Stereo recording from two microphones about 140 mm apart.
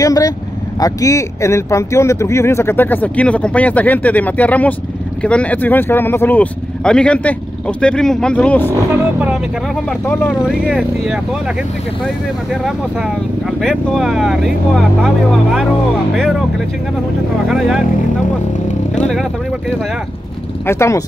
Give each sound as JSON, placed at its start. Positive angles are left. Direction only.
{"t": 0.0, "sound": "speech", "side_deg": 25}
{"t": 9.8, "sound": "speech", "side_deg": 15}
{"t": 10.4, "sound": "speech", "side_deg": -5}
{"t": 13.6, "sound": "speech", "side_deg": 0}
{"t": 16.2, "sound": "speech", "side_deg": 0}
{"t": 20.6, "sound": "speech", "side_deg": 20}